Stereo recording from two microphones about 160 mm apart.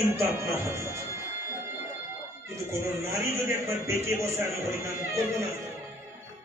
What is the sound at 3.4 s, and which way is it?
Speech, 15° right (ahead or behind).